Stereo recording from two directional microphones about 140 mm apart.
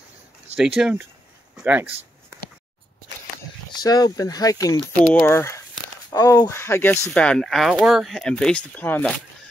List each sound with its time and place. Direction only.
0.6 s speech: 5° right (ahead or behind)
3.7 s speech: 30° left (ahead or behind)
7.2 s speech: 5° left (ahead or behind)